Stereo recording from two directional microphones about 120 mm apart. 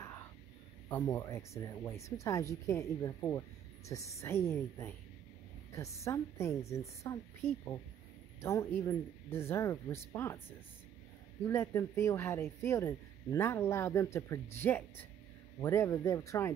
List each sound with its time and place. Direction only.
1.0 s speech: 25° left (ahead or behind)
11.4 s speech: 25° left (ahead or behind)